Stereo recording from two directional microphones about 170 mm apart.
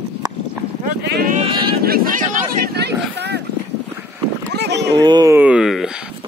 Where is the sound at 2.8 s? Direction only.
80° right.